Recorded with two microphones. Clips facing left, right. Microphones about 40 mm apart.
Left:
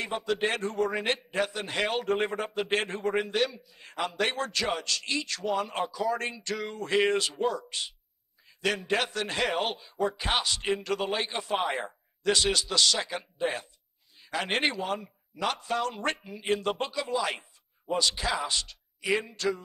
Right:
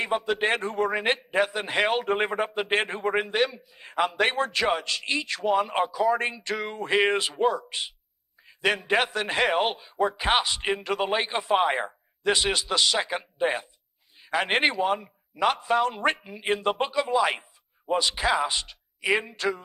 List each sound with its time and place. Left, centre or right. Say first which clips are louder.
0.0 s a man's voice: right 4 dB; right
8.5 s a sound: right 4 dB; right
8.7 s a man's voice: right 4 dB; right